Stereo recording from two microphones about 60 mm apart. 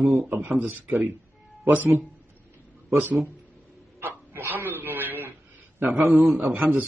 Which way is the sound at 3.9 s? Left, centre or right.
Right.